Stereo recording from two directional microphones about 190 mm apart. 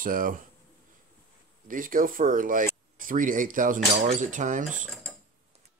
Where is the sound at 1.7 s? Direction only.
45° right (ahead or behind).